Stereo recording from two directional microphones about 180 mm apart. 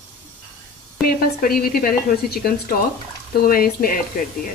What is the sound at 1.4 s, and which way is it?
A woman's voice, 55° left (ahead or behind).